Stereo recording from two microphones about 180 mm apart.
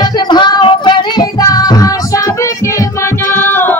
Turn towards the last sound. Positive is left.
turn(degrees=10)  # may be behind; listen again after turning